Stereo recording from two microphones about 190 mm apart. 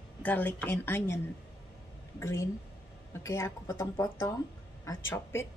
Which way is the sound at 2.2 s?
15° left (ahead or behind).